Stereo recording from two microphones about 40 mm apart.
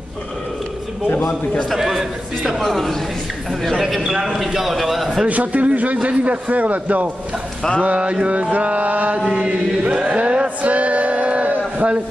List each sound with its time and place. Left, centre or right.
1.7 s a man's voice: centre
2.6 s a man's voice: centre
5.3 s a man's voice: right
7.8 s a man's voice: right
9.3 s chant: right
10.0 s a sound: right